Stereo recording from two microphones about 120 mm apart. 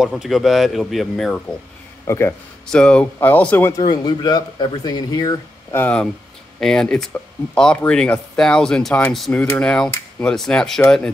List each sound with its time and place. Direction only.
0.0 s speech: 5° right (ahead or behind)
2.0 s speech: 20° left (ahead or behind)
2.6 s speech: 5° left (ahead or behind)
4.0 s speech: 35° left (ahead or behind)
5.7 s speech: 15° left (ahead or behind)
6.6 s speech: 5° left (ahead or behind)